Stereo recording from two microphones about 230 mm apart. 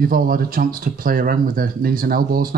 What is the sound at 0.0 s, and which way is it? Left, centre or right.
Speech, right.